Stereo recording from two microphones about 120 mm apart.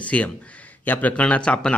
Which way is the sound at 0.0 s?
10° left (ahead or behind).